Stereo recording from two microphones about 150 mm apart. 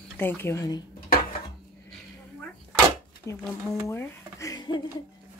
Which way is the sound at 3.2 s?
20° left (ahead or behind).